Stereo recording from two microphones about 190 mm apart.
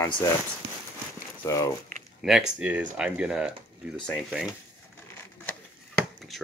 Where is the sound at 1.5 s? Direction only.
15° left (ahead or behind).